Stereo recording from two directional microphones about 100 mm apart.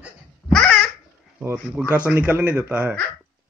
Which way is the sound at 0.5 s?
10° left (ahead or behind).